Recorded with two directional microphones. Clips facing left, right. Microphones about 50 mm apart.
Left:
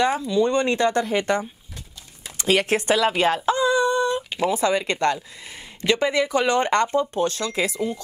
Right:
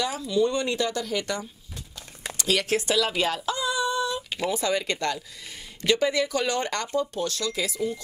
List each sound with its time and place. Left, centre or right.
0.0 s speech: left
2.3 s a sound: left
4.5 s speech: left